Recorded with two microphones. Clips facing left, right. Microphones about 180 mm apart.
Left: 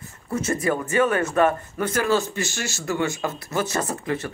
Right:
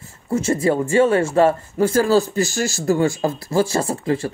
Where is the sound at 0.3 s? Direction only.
25° right (ahead or behind).